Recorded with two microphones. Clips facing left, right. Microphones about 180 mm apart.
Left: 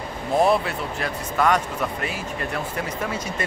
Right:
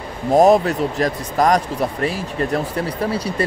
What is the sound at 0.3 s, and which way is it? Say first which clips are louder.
Speech: right 7 dB; 40° right (ahead or behind).